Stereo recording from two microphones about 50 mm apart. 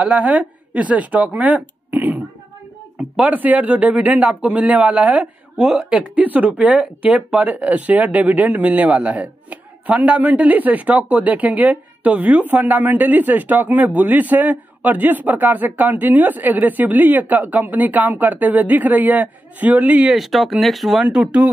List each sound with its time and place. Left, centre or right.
0.0 s speech: right
3.3 s speech: right
5.6 s speech: centre
6.1 s speech: right
20.1 s speech: centre
21.0 s speech: right